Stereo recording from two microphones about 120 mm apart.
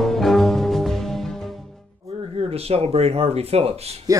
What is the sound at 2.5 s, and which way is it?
Speech, 55° right (ahead or behind).